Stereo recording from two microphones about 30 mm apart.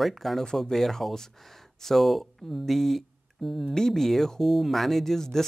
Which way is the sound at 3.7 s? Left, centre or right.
Centre.